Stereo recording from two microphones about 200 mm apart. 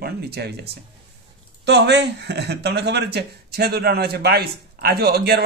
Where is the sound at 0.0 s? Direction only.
50° right (ahead or behind).